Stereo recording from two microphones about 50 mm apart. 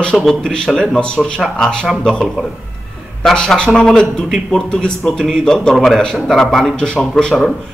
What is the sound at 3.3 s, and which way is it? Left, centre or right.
Speech, centre.